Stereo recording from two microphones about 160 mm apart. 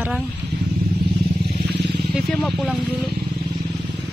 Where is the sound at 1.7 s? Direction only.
90° right.